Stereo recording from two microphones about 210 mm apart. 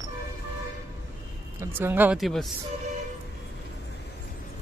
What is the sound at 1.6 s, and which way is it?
Speech, 10° right (ahead or behind).